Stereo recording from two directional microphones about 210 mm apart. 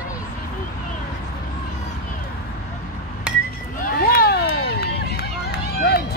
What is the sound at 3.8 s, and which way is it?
Run, 45° left (ahead or behind).